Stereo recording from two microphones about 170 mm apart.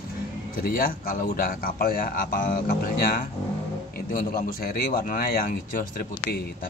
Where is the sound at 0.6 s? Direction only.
55° left (ahead or behind).